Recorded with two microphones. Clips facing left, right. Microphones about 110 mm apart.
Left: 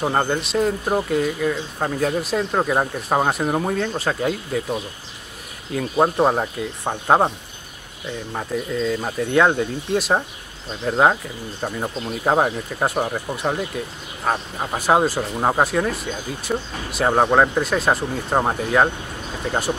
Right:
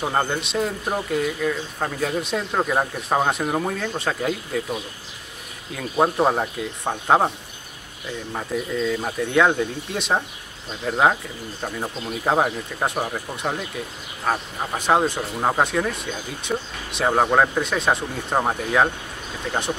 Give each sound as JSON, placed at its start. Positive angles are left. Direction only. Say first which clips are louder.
{"t": 0.0, "sound": "speech", "louder": "left 2 dB", "side_deg": 5}
{"t": 13.3, "sound": "speech", "louder": "left 4 dB", "side_deg": 15}